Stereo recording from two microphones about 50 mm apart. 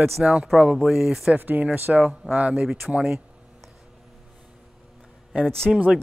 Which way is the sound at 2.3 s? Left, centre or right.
Right.